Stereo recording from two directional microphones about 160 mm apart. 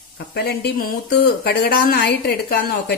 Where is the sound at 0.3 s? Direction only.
90° left.